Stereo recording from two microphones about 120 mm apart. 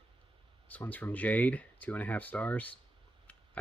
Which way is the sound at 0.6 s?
15° left (ahead or behind).